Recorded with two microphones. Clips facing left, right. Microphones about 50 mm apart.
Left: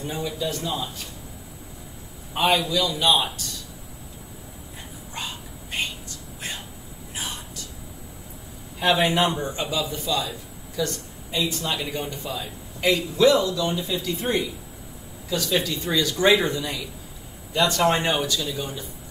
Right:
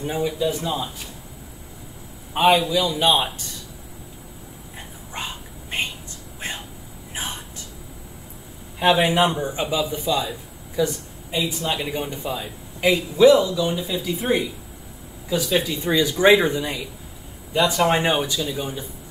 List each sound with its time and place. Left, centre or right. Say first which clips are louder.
0.0 s speech: right 5 dB; centre
2.3 s speech: right 4 dB; centre
5.1 s whispering: right 2 dB; right
7.2 s a sound: right 2 dB; right
8.7 s speech: right 3 dB; centre